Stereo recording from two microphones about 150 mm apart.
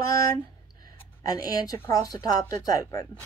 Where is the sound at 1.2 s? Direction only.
25° left (ahead or behind).